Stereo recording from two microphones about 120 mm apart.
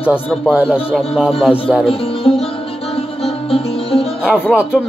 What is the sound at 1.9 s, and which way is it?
Music, 50° left (ahead or behind).